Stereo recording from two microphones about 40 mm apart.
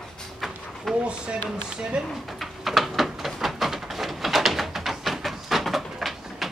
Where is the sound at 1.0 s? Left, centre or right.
Right.